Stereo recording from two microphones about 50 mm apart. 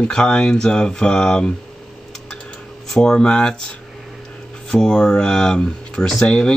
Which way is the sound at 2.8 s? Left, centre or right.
Centre.